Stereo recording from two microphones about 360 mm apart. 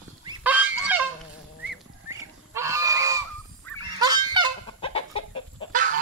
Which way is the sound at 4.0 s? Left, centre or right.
Centre.